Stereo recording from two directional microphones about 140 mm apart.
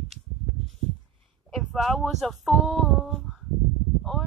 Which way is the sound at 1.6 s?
Centre (ahead or behind).